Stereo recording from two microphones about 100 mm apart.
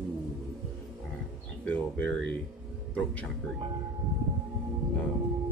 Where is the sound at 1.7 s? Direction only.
10° left (ahead or behind).